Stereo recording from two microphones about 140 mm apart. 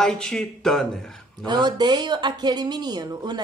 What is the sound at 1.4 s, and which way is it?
Speech, 30° right (ahead or behind).